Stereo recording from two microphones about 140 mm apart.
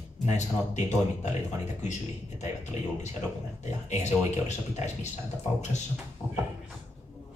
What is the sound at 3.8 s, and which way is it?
Speech, 55° left (ahead or behind).